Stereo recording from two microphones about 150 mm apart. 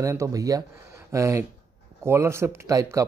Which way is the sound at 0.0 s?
20° right (ahead or behind).